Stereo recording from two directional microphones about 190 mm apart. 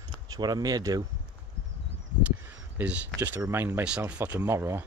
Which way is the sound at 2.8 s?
10° right (ahead or behind).